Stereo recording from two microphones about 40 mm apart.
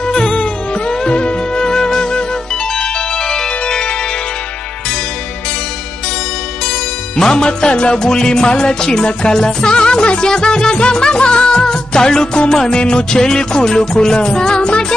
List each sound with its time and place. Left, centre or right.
0.0 s music: centre
7.2 s music: centre